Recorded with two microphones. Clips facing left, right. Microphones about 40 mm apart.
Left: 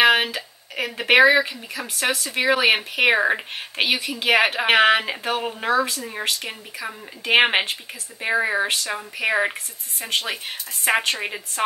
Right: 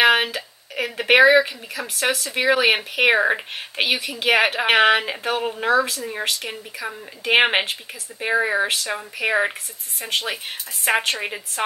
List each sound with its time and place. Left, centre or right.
0.0 s speech: centre